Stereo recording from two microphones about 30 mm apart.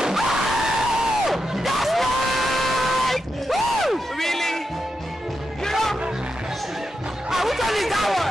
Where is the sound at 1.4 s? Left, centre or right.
Centre.